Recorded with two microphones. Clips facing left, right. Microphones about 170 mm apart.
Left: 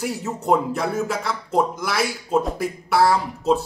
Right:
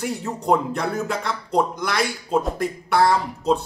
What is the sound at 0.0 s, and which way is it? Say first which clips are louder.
Speech: even; 5° left (ahead or behind).